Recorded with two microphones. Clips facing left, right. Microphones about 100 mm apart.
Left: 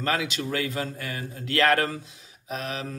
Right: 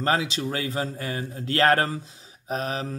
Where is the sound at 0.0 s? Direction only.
30° right (ahead or behind).